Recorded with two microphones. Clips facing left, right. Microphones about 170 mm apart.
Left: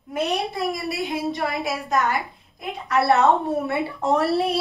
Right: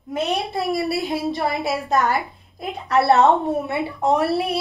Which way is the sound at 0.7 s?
35° right (ahead or behind).